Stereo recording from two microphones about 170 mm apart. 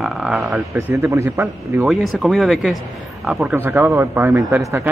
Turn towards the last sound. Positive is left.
turn(degrees=-15)  # may be behind; listen again after turning